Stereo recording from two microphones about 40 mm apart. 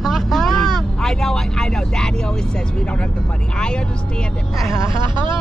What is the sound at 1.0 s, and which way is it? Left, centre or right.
Speech, centre.